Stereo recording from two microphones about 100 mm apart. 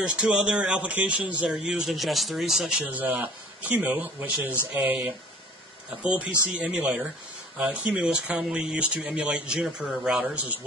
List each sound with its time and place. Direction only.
0.0 s speech: 10° right (ahead or behind)
2.8 s speech: 15° right (ahead or behind)
6.0 s speech: 15° right (ahead or behind)